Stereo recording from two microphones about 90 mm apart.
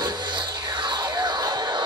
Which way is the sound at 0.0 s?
55° right (ahead or behind).